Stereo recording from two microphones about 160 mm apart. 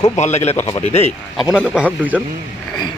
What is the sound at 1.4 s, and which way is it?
Speech, centre (ahead or behind).